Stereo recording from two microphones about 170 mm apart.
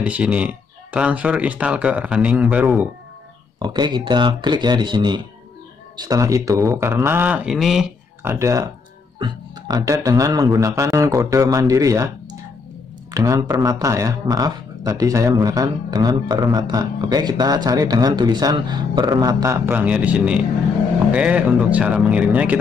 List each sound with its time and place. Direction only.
0.0 s speech: 5° right (ahead or behind)
3.5 s speech: 25° right (ahead or behind); by 7.9 s centre (ahead or behind)
8.2 s speech: 15° right (ahead or behind)